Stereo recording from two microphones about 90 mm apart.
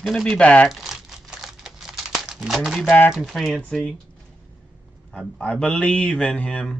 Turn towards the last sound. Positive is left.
turn(degrees=10)  # may be behind; listen again after turning